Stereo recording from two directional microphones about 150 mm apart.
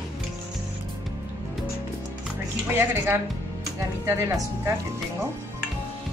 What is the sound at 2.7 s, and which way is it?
A woman's voice, 15° right (ahead or behind).